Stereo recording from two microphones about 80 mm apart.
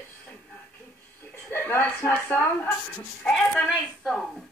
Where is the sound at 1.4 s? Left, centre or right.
Left.